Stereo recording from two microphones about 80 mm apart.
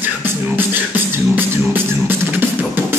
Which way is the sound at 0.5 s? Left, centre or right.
Right.